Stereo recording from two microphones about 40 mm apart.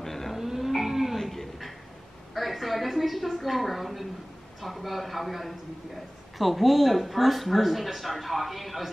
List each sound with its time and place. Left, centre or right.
0.0 s music: centre
0.4 s a sound: centre
2.3 s a woman's voice: centre